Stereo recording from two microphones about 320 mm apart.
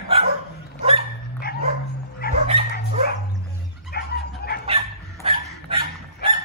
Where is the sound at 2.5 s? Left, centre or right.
Centre.